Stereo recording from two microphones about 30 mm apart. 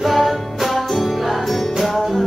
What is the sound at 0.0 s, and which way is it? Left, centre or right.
Music, centre.